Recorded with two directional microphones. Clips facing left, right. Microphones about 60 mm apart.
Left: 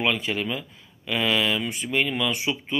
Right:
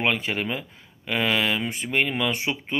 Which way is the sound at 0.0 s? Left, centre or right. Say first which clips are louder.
Even; right.